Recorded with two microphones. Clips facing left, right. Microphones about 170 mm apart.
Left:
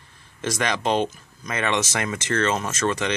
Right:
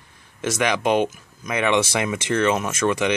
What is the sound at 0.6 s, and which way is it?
Speech, 10° right (ahead or behind).